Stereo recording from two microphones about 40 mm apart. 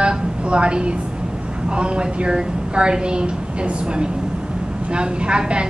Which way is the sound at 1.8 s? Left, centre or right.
Right.